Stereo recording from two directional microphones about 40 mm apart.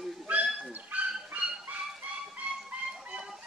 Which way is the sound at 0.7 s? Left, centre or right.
Right.